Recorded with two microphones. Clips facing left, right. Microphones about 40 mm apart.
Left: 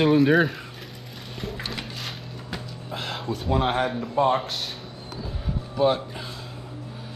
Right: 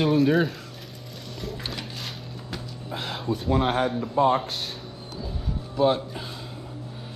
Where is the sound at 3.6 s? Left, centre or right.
Centre.